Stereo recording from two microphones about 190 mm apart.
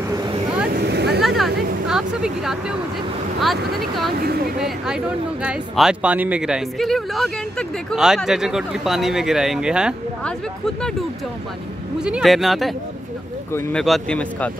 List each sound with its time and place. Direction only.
0.7 s vehicle: 60° right (ahead or behind)
1.2 s a sound: centre (ahead or behind)
3.3 s speech: centre (ahead or behind)
12.0 s speech: 5° right (ahead or behind)
13.5 s a man's voice: 15° left (ahead or behind)